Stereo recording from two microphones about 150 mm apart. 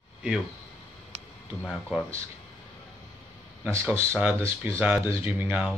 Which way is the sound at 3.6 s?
15° right (ahead or behind).